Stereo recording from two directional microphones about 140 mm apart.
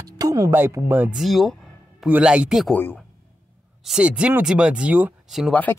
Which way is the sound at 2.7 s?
15° left (ahead or behind).